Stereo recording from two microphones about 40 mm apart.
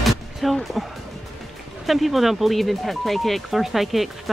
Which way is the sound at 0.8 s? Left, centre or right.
Centre.